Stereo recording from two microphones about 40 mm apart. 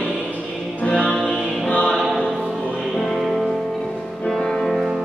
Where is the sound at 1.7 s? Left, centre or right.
Left.